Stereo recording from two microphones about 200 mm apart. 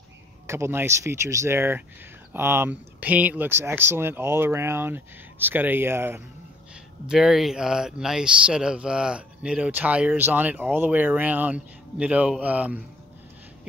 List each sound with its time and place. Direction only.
0.5 s speech: 10° right (ahead or behind)